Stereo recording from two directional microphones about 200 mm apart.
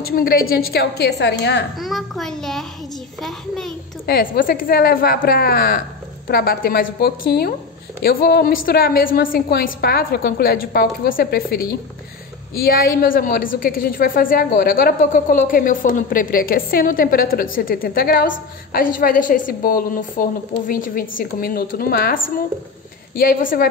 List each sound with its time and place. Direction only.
0.0 s a woman's voice: 45° left (ahead or behind)
1.8 s a child's voice: centre (ahead or behind)
4.0 s a woman's voice: 50° left (ahead or behind)